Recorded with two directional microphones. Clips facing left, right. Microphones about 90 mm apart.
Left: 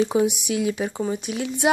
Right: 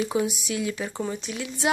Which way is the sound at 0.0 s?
25° left (ahead or behind).